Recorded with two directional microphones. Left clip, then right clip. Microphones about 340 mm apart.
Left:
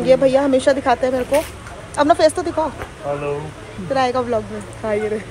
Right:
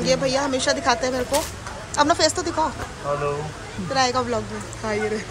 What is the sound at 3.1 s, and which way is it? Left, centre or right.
Speech, left.